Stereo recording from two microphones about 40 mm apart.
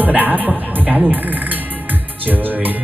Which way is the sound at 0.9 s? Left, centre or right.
Right.